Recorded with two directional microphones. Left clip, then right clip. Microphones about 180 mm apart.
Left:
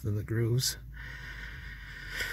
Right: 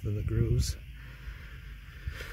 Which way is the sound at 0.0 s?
5° right (ahead or behind).